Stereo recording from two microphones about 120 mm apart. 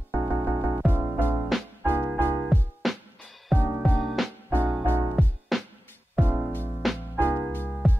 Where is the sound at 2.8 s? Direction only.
Centre (ahead or behind).